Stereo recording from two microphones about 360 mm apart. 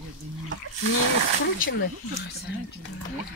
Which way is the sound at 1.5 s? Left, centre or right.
Left.